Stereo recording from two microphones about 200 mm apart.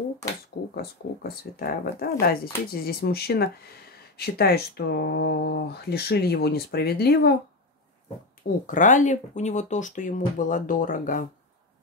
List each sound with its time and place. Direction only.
0.7 s speech: 50° left (ahead or behind)
8.6 s speech: 40° left (ahead or behind)